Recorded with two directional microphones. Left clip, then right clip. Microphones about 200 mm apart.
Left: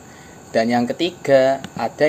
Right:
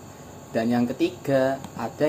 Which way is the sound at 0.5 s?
25° left (ahead or behind).